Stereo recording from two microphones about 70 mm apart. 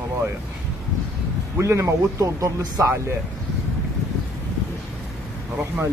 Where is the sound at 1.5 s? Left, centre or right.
Right.